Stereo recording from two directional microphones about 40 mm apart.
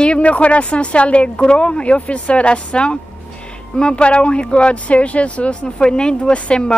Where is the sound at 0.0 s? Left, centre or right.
Left.